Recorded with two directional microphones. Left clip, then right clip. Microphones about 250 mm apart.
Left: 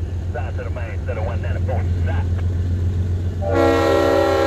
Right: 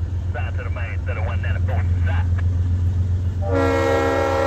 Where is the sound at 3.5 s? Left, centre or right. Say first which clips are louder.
Left 3 dB; centre.